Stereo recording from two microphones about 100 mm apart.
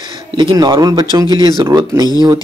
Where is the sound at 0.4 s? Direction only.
45° right (ahead or behind).